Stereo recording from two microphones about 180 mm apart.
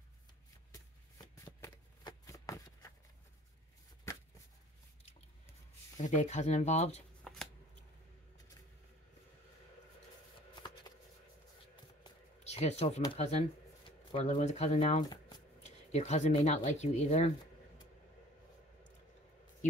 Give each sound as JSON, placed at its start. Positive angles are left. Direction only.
{"t": 0.7, "sound": "shuffling cards", "side_deg": 20}
{"t": 5.9, "sound": "speech", "side_deg": 40}
{"t": 7.3, "sound": "shuffling cards", "side_deg": 5}
{"t": 12.4, "sound": "speech", "side_deg": 35}
{"t": 15.0, "sound": "shuffling cards", "side_deg": 25}
{"t": 15.6, "sound": "speech", "side_deg": 40}